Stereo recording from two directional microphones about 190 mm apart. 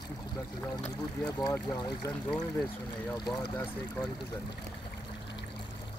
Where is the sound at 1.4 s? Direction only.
20° left (ahead or behind).